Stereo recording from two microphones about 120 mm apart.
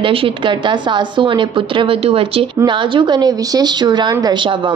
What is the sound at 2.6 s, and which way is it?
A woman's voice, 40° right (ahead or behind).